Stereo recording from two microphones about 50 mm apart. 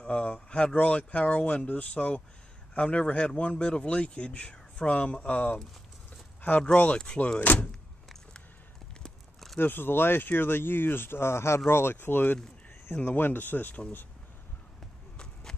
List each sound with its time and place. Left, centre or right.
0.0 s speech: left
6.6 s speech: left
7.3 s speech: left
9.6 s speech: left